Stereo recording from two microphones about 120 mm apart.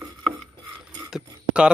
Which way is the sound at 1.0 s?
5° right (ahead or behind).